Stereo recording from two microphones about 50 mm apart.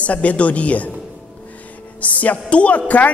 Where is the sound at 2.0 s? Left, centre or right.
Left.